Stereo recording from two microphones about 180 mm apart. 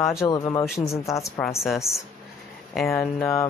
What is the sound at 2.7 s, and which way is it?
Speech, 5° left (ahead or behind).